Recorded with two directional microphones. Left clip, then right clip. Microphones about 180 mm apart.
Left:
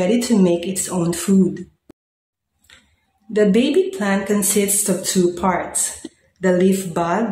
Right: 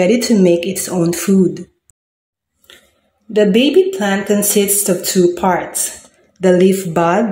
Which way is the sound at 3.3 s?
10° right (ahead or behind).